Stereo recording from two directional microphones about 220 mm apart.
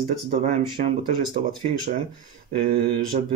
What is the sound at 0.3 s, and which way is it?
Speech, 30° right (ahead or behind).